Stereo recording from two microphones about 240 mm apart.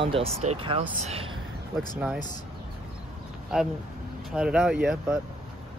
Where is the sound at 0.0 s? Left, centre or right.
Right.